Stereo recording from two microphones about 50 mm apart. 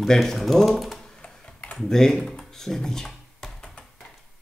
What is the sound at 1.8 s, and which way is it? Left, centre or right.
Speech, centre.